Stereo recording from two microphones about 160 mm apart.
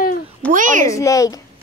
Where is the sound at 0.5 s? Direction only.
55° right (ahead or behind).